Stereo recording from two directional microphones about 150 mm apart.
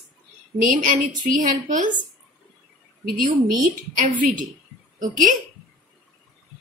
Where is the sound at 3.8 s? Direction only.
60° right (ahead or behind).